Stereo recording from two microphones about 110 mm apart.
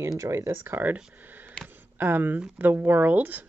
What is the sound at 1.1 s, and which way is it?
Camera, 15° right (ahead or behind).